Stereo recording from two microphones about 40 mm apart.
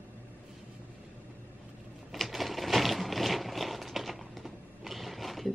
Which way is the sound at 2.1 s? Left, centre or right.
Centre.